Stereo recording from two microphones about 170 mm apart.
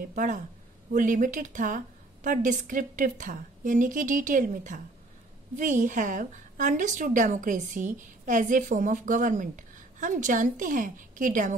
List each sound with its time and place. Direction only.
0.1 s a woman's voice: 50° right (ahead or behind)